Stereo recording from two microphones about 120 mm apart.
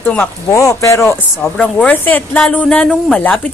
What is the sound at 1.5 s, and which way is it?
Speech, 10° left (ahead or behind).